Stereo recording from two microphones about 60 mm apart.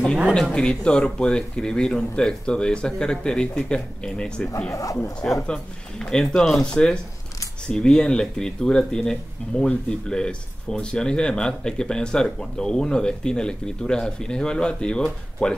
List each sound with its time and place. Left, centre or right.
0.3 s speech: centre
4.6 s speech: left
5.5 s speech: centre